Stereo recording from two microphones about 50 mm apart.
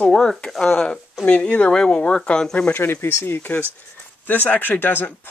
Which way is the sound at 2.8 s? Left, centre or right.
Left.